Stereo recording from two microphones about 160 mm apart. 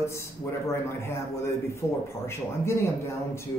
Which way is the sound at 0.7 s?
15° left (ahead or behind).